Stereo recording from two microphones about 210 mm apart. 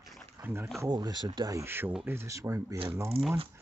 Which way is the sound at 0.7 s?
20° right (ahead or behind).